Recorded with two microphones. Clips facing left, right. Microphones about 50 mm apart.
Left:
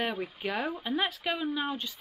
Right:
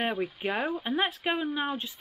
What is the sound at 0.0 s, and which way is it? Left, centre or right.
Speech, centre.